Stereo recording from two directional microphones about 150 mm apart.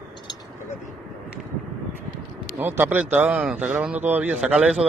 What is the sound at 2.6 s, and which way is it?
A man's voice, 10° right (ahead or behind).